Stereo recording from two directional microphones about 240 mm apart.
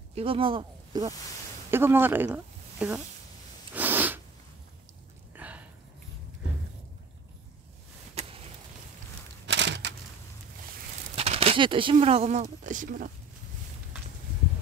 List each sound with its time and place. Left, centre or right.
0.1 s speech: right; by 3.0 s centre
3.7 s sneeze: centre
5.3 s a sound: centre
8.1 s a sound: right
9.5 s typewriter: right
11.1 s speech: right